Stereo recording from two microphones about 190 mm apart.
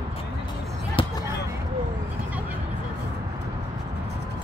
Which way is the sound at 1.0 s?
25° left (ahead or behind).